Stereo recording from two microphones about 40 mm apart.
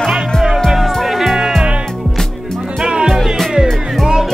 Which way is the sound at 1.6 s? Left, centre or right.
Right.